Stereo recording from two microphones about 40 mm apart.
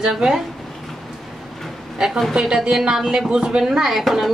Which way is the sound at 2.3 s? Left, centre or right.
Centre.